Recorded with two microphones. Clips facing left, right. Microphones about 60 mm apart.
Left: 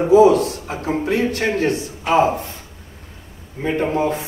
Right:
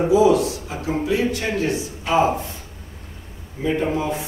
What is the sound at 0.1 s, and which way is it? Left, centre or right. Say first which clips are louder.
A man's voice: left 6 dB; left.